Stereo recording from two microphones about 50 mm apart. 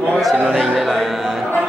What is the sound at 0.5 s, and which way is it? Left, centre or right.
Music, centre.